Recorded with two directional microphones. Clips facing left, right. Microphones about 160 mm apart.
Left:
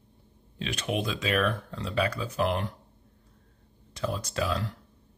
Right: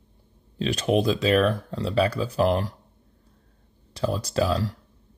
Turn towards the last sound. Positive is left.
turn(degrees=-35)  # may be behind; listen again after turning